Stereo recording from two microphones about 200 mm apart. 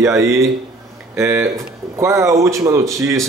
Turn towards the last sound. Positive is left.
turn(degrees=-15)  # may be behind; listen again after turning